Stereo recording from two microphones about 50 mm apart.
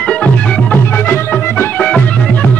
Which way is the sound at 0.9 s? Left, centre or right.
Left.